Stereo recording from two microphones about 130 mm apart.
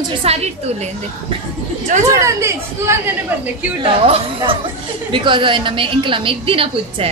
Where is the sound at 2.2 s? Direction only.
20° right (ahead or behind).